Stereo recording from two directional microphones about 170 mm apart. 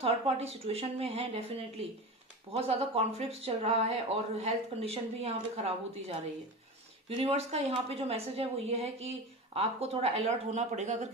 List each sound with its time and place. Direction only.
0.0 s a woman's voice: 35° right (ahead or behind)
7.2 s a woman's voice: 35° right (ahead or behind)